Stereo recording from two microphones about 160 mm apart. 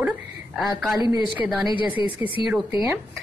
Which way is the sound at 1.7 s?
30° left (ahead or behind).